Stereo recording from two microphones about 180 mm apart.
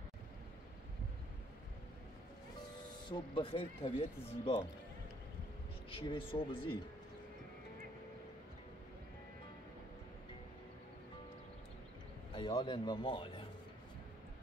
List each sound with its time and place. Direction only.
3.1 s speech: 30° left (ahead or behind)
5.9 s speech: 30° left (ahead or behind)
12.4 s speech: 25° left (ahead or behind)